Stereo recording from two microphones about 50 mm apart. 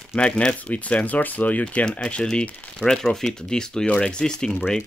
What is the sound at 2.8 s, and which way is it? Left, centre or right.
Speech, centre.